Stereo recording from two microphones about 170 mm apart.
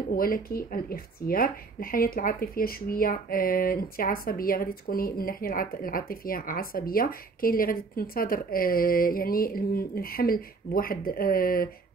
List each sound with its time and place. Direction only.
0.1 s speech: 60° left (ahead or behind)